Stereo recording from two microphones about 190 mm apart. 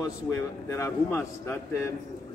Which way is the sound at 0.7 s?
10° left (ahead or behind).